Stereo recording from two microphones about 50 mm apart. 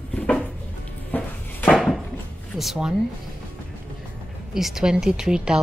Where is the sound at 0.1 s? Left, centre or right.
Left.